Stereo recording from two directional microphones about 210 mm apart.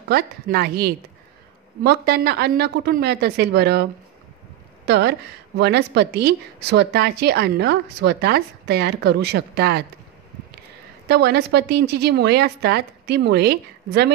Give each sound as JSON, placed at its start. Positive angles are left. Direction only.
{"t": 0.1, "sound": "a woman's voice", "side_deg": -45}
{"t": 4.8, "sound": "a woman's voice", "side_deg": -50}
{"t": 11.1, "sound": "a woman's voice", "side_deg": -50}